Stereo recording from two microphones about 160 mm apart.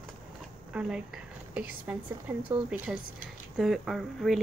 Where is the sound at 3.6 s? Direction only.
Centre (ahead or behind).